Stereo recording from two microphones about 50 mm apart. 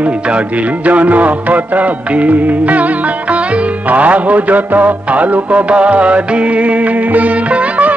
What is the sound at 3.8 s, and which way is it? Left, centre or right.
Music, right.